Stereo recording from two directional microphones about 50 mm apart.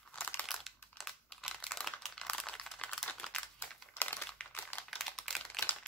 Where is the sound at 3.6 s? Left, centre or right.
Left.